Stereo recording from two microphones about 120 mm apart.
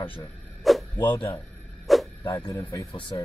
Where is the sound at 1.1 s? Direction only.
35° left (ahead or behind).